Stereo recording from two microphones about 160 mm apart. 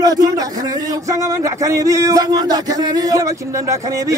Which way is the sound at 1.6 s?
20° right (ahead or behind).